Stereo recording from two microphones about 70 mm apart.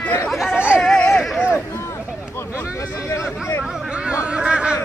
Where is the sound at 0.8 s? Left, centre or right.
Centre.